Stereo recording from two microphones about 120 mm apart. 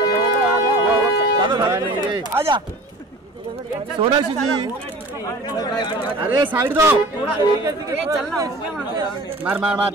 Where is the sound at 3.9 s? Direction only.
40° right (ahead or behind).